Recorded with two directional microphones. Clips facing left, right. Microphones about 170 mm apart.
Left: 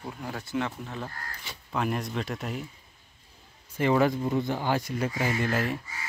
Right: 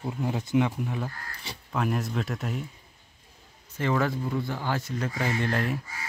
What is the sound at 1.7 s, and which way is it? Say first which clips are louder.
Speech: right 1 dB; centre (ahead or behind).